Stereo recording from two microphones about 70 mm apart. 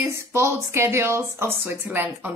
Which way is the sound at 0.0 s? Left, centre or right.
Right.